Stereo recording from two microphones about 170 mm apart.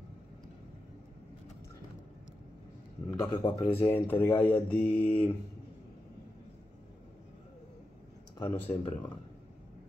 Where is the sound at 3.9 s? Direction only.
10° left (ahead or behind).